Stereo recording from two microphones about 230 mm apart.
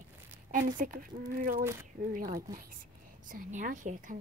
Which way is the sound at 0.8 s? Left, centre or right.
Right.